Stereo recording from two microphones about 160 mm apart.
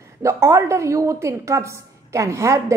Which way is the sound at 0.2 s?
20° right (ahead or behind).